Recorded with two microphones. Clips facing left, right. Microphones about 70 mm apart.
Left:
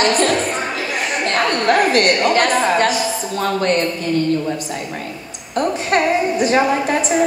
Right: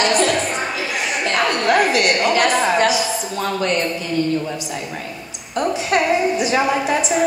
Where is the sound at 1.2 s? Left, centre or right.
Left.